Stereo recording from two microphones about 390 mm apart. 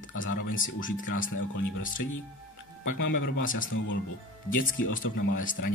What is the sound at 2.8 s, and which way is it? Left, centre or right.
Speech, left.